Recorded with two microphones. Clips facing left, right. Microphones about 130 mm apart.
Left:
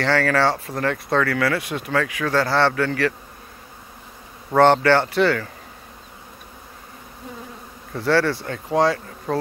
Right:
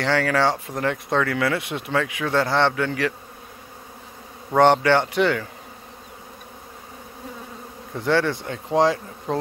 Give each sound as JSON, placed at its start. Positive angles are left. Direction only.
{"t": 0.0, "sound": "speech", "side_deg": -15}
{"t": 4.6, "sound": "speech", "side_deg": -15}
{"t": 7.9, "sound": "speech", "side_deg": -20}